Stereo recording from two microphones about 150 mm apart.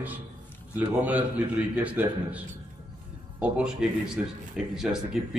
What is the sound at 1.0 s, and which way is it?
A man's voice, 10° right (ahead or behind).